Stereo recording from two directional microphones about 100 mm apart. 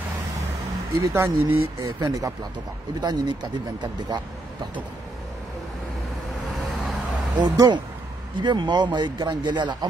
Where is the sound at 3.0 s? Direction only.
45° right (ahead or behind).